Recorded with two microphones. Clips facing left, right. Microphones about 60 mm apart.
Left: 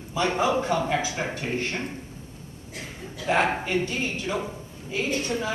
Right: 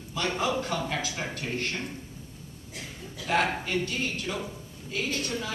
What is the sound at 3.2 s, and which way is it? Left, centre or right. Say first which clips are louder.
Speech: left 3 dB; left.